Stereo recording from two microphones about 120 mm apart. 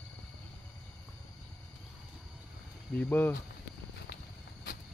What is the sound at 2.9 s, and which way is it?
Speech, 15° left (ahead or behind).